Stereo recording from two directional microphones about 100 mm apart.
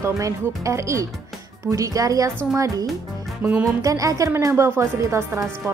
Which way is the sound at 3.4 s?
15° right (ahead or behind).